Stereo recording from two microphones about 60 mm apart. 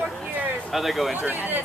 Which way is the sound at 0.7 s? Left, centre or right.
Centre.